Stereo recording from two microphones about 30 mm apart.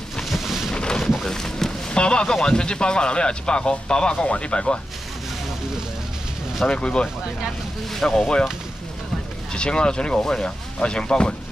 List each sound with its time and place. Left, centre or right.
0.2 s a sound: centre
0.7 s a sound: left
1.2 s a sound: centre
1.9 s boat: left
2.3 s speech: left
6.6 s speech: left
7.9 s speech: centre
8.2 s speech: left
9.5 s speech: left